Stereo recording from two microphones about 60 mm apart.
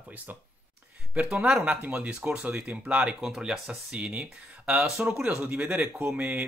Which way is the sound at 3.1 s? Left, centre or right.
Centre.